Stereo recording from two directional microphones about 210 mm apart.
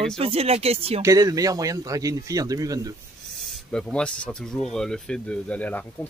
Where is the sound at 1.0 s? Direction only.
15° right (ahead or behind).